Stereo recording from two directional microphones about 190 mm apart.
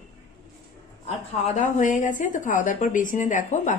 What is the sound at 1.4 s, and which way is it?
A woman's voice, 40° left (ahead or behind).